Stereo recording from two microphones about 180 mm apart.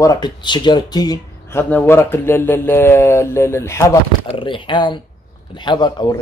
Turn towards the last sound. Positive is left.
turn(degrees=25)  # may be behind; listen again after turning